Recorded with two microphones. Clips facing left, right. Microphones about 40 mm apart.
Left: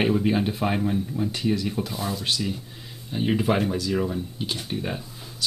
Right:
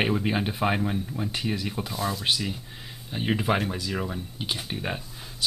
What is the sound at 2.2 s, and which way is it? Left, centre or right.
Speech, centre.